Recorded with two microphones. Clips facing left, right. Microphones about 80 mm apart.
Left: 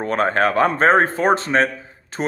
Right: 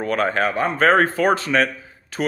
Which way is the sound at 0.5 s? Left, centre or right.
Left.